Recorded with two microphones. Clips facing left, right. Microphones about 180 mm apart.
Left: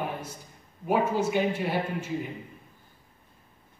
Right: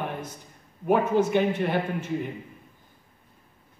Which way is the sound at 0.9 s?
10° left (ahead or behind).